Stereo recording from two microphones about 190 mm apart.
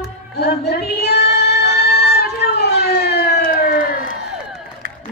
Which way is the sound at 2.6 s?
60° left (ahead or behind).